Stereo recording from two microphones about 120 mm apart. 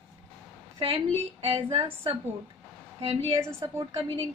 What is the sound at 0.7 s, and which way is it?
A woman's voice, 50° right (ahead or behind).